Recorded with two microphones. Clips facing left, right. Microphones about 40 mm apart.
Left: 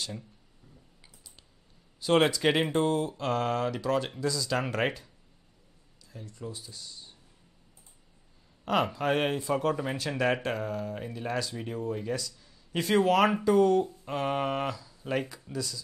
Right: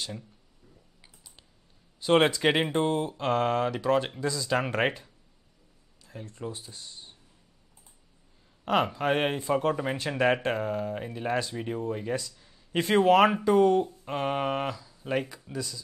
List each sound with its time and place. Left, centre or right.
2.0 s speech: centre
6.0 s speech: right
8.6 s speech: centre